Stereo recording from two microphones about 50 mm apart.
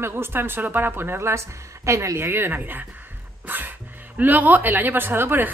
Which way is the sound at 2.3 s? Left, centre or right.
Right.